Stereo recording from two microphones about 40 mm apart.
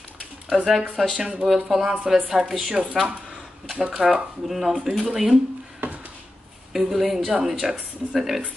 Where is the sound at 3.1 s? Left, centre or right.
Right.